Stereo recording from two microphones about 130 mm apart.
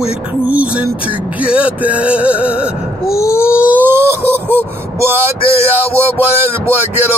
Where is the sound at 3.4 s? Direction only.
10° right (ahead or behind).